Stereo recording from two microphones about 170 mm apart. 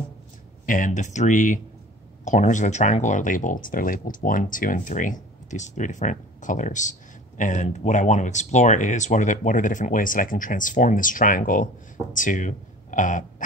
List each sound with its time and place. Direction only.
0.7 s speech: 50° left (ahead or behind)